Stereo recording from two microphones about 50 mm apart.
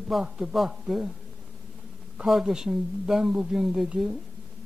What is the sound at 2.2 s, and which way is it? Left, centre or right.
A man's voice, centre.